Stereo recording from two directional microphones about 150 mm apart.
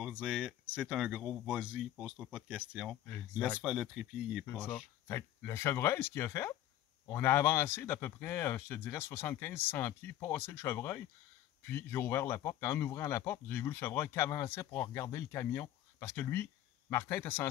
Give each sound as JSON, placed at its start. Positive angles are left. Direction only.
{"t": 0.0, "sound": "speech", "side_deg": -5}
{"t": 4.5, "sound": "speech", "side_deg": 10}